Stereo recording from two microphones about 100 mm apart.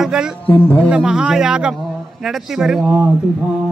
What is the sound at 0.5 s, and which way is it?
Speech, 20° left (ahead or behind).